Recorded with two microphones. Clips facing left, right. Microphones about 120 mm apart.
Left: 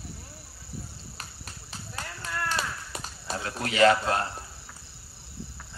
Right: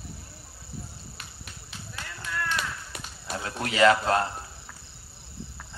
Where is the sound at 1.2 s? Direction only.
40° left (ahead or behind).